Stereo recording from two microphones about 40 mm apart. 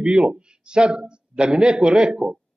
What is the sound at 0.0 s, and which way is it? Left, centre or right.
A man's voice, right.